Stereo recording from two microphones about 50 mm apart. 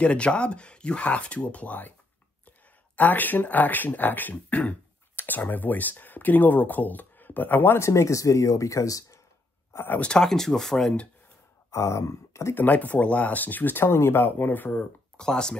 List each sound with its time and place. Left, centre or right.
0.0 s speech: left
3.0 s speech: left
7.8 s speech: left
10.0 s speech: centre
11.7 s speech: left
12.5 s speech: left
13.8 s speech: left
14.4 s speech: left
14.7 s speech: centre